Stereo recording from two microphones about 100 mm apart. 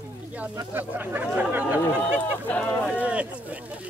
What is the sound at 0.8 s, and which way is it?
Speech, 20° right (ahead or behind).